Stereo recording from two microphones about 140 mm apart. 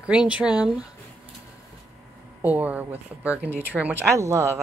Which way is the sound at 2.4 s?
10° right (ahead or behind).